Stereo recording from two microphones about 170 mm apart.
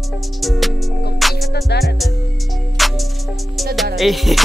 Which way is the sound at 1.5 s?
70° left (ahead or behind).